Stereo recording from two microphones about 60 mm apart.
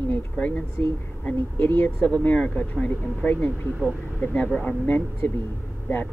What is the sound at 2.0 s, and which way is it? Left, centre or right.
Speech, left.